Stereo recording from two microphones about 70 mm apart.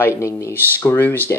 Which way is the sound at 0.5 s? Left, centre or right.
Left.